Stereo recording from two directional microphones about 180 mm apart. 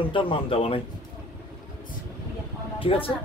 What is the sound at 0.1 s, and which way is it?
Speech, 30° left (ahead or behind).